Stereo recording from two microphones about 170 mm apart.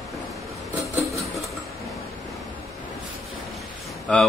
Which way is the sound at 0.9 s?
20° right (ahead or behind).